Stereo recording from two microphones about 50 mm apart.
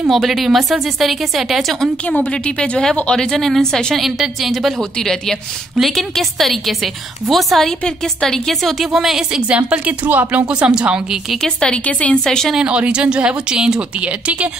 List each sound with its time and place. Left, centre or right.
0.1 s a woman's voice: centre
2.0 s a woman's voice: left; by 7.7 s centre
7.8 s a woman's voice: centre
9.6 s speech: right
10.5 s speech: right
11.4 s a woman's voice: centre
12.5 s speech: right
14.0 s speech: right